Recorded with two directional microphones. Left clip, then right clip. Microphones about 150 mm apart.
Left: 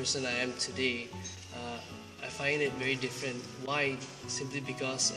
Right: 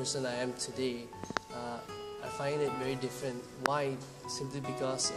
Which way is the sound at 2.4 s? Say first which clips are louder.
Left 3 dB; 15° right (ahead or behind).